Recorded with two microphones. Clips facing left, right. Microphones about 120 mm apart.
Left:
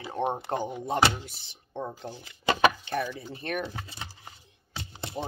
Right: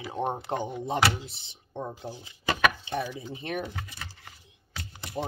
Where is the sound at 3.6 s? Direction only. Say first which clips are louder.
Left 1 dB; 25° left (ahead or behind).